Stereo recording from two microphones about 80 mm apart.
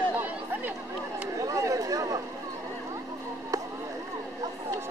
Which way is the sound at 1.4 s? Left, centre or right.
Right.